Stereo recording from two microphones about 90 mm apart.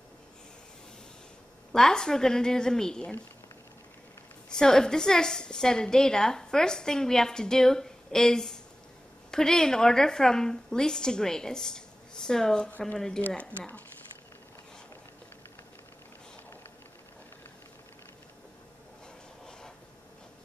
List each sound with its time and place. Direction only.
1.7 s a woman's voice: 5° left (ahead or behind)
4.5 s a woman's voice: 5° left (ahead or behind)